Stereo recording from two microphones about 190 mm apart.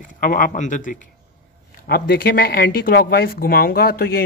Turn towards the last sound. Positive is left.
turn(degrees=55)  # may be behind; listen again after turning